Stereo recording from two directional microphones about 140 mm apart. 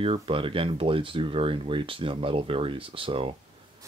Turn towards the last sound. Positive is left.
turn(degrees=-40)  # may be behind; listen again after turning